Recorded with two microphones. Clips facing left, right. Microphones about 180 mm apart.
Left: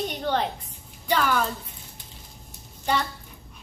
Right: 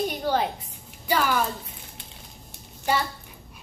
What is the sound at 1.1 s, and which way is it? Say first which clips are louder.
Speech: even; 5° right (ahead or behind).